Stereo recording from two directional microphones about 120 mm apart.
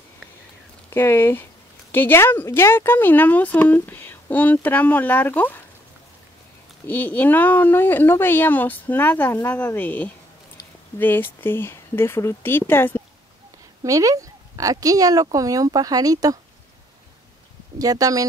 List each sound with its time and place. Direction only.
0.8 s speech: 20° left (ahead or behind)
6.9 s speech: 15° left (ahead or behind)
13.8 s speech: 30° right (ahead or behind)
17.7 s speech: 30° right (ahead or behind)